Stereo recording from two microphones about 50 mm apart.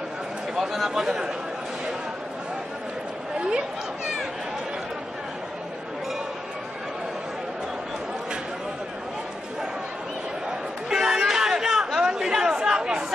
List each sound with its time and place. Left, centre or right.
0.6 s speech: centre
3.3 s chatter: centre
10.9 s chatter: centre